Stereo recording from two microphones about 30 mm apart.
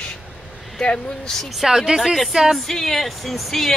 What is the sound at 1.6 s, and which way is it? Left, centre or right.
Speech, centre.